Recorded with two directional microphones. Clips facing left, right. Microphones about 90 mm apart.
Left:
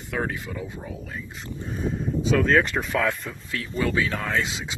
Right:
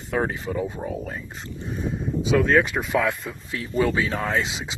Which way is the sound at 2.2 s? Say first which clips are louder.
Right 1 dB; centre (ahead or behind).